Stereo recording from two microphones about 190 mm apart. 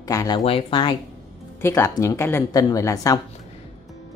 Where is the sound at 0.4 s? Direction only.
30° left (ahead or behind).